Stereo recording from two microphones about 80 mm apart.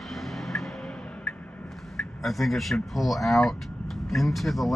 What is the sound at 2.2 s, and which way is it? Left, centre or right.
Speech, centre.